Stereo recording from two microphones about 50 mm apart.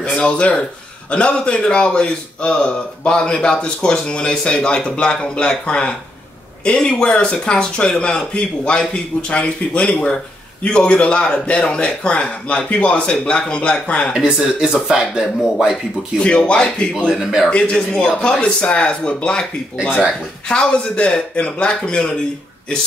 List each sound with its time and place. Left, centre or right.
0.0 s speech: left
14.2 s speech: centre
16.2 s speech: left
17.1 s a man's voice: centre
17.5 s speech: left